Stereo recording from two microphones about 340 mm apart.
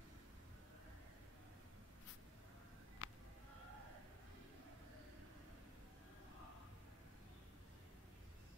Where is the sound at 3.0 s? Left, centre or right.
Left.